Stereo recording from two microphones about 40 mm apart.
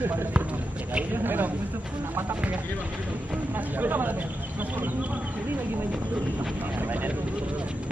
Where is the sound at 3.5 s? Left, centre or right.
Right.